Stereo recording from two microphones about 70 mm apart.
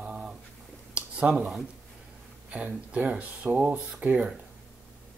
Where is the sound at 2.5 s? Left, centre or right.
Centre.